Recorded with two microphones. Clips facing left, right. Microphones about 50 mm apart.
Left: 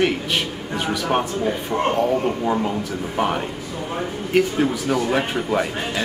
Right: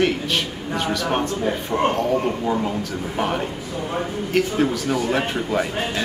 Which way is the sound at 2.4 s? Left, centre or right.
Centre.